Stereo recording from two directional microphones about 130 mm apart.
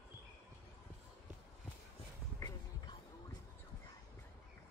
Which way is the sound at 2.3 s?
25° left (ahead or behind).